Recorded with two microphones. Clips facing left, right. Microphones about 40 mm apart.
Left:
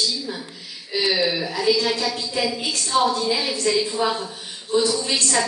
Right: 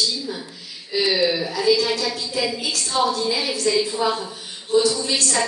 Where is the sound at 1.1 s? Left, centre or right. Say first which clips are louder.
Right 2 dB; centre.